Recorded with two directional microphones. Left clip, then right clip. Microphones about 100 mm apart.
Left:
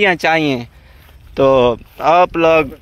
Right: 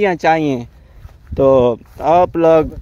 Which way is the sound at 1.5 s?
40° right (ahead or behind).